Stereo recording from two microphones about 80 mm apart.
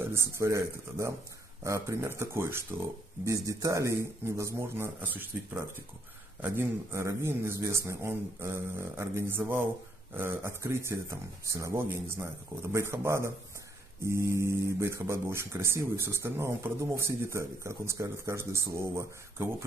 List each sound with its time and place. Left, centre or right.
0.0 s speech: right